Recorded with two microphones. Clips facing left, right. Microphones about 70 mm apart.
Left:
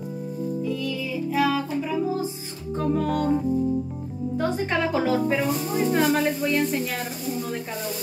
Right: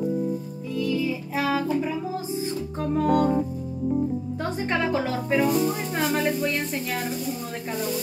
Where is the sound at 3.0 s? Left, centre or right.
Centre.